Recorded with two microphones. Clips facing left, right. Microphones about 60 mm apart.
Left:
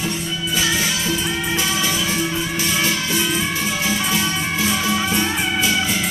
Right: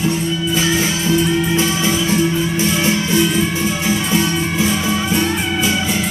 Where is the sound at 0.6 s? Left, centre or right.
Right.